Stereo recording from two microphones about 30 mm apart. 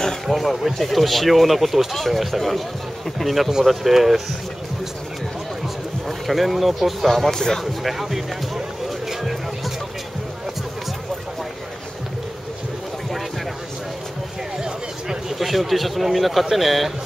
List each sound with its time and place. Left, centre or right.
0.3 s speech: centre
6.0 s speech: centre
7.2 s speech: centre
7.8 s speech: centre
14.6 s a sound: centre
15.3 s speech: centre